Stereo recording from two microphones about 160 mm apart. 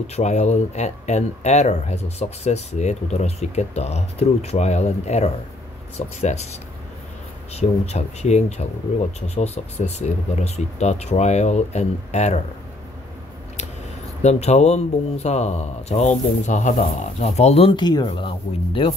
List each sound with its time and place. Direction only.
0.0 s speech: 45° left (ahead or behind)
7.5 s speech: 40° left (ahead or behind)
14.2 s speech: 45° left (ahead or behind)